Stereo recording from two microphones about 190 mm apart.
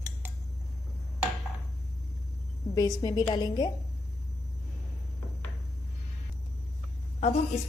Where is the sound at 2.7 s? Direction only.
20° left (ahead or behind).